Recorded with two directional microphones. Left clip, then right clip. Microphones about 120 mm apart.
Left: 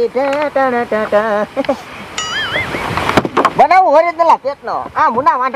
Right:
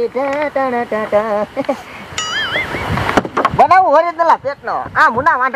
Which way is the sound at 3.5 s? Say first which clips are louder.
Even; 10° right (ahead or behind).